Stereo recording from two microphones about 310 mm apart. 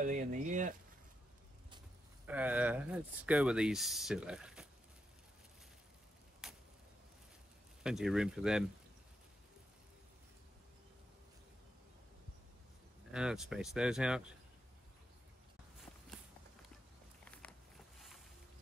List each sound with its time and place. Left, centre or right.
0.0 s speech: right
2.2 s speech: centre
6.4 s a sound: centre
7.8 s speech: centre
13.1 s speech: centre
17.2 s a sound: centre